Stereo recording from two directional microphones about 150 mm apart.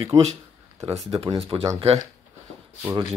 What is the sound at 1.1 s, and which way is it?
Speech, 40° right (ahead or behind).